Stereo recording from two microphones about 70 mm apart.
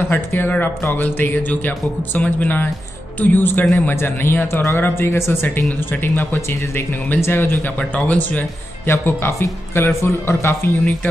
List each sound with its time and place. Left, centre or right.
0.1 s speech: left
7.9 s speech: left
8.8 s speech: left